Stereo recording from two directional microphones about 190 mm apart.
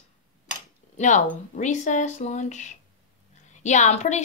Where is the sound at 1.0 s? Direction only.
40° left (ahead or behind).